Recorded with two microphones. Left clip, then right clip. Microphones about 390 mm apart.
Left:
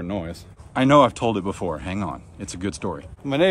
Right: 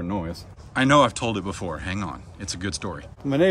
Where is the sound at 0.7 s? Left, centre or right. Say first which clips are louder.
Left 2 dB; centre.